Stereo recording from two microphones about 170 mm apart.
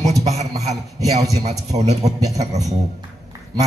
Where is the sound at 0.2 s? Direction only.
40° right (ahead or behind).